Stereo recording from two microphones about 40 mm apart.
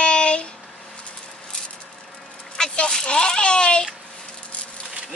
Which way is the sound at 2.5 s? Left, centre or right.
Left.